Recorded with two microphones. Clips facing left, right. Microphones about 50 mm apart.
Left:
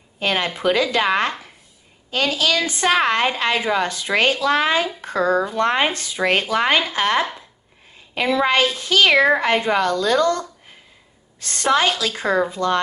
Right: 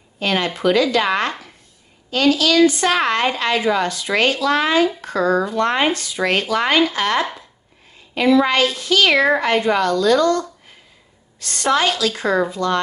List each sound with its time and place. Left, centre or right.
0.2 s a woman's voice: centre
9.4 s a woman's voice: left